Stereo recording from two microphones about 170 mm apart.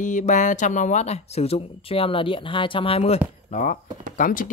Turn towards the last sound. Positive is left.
turn(degrees=50)  # may be behind; listen again after turning